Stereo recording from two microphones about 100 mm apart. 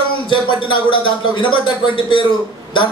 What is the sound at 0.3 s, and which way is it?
A man's voice, 55° left (ahead or behind).